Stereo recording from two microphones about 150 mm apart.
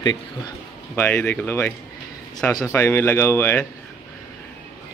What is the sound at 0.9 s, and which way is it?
Speech, 10° left (ahead or behind).